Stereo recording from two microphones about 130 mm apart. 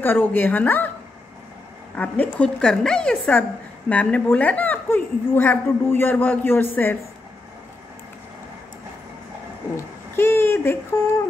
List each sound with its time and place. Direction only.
0.0 s a woman's voice: 15° left (ahead or behind)
2.0 s a woman's voice: 10° left (ahead or behind)
10.1 s a sound: 20° left (ahead or behind)